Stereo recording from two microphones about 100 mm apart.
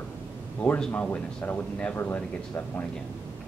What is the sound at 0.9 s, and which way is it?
Speech, 15° left (ahead or behind).